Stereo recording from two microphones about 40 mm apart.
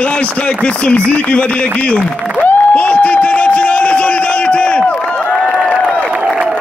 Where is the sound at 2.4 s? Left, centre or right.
Left.